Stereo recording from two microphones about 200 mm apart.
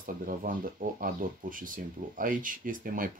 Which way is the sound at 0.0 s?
45° right (ahead or behind).